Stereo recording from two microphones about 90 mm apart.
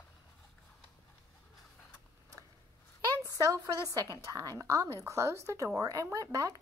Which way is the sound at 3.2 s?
40° right (ahead or behind).